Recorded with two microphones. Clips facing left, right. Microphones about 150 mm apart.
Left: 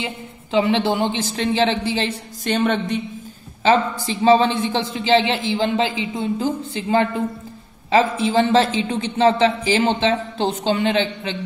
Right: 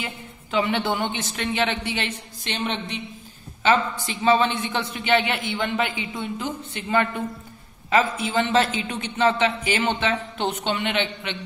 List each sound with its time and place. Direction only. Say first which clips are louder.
0.0 s speech: left 5 dB; 25° left (ahead or behind)
2.4 s a woman's voice: left 9 dB; 50° left (ahead or behind)
4.0 s a man's voice: left 5 dB; 35° left (ahead or behind)